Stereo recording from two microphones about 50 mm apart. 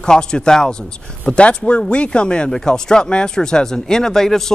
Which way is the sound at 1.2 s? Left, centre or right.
Left.